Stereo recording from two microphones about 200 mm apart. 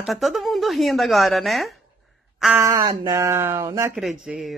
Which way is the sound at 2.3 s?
Centre (ahead or behind).